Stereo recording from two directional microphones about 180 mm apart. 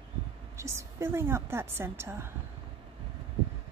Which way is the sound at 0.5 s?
15° right (ahead or behind).